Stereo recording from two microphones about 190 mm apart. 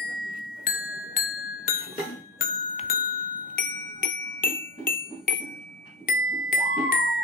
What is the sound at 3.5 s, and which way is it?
Music, 50° left (ahead or behind).